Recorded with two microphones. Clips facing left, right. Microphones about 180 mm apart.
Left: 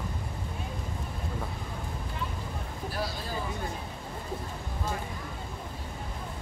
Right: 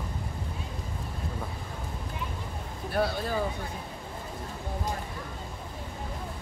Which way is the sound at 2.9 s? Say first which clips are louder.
Right 8 dB; 60° right (ahead or behind).